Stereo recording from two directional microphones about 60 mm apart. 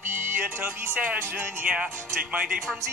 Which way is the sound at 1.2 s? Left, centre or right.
Right.